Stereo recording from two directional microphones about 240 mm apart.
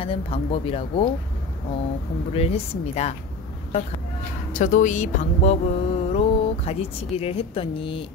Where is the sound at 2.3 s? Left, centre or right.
Left.